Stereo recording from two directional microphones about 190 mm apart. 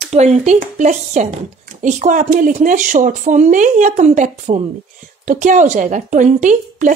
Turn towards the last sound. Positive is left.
turn(degrees=-40)  # may be behind; listen again after turning